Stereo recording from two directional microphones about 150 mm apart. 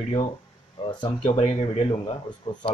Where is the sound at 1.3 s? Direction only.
40° left (ahead or behind).